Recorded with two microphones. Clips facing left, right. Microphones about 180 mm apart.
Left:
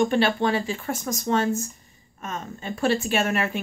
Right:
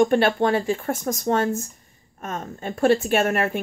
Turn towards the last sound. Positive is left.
turn(degrees=-50)  # may be behind; listen again after turning